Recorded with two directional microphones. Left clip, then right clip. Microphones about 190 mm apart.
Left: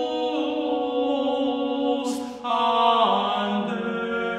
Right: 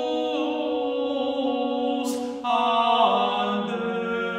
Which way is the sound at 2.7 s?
25° left (ahead or behind).